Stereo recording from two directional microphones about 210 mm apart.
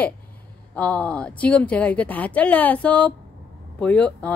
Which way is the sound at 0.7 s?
5° left (ahead or behind).